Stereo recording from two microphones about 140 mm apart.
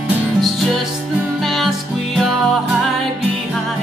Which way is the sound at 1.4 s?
Centre (ahead or behind).